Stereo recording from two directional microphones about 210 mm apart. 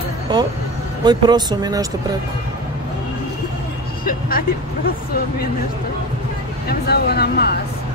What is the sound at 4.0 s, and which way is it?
Speech, 45° left (ahead or behind).